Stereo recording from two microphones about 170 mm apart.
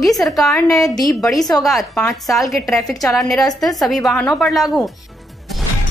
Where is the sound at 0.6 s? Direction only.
20° left (ahead or behind).